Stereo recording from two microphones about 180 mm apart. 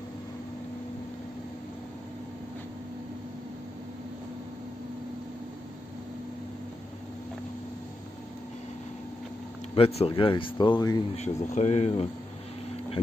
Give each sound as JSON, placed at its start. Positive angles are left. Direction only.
{"t": 9.8, "sound": "speech", "side_deg": 35}
{"t": 11.1, "sound": "speech", "side_deg": 40}